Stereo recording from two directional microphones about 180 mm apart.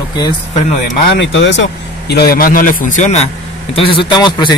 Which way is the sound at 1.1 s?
90° left.